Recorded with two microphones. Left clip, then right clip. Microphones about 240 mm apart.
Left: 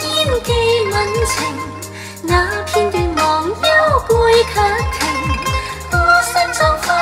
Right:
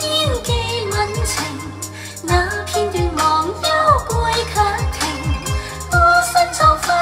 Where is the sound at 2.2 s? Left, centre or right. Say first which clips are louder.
Left 3 dB; right.